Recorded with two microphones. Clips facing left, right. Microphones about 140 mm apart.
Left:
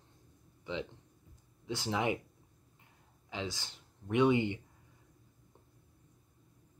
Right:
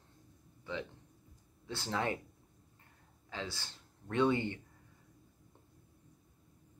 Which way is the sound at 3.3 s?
15° left (ahead or behind).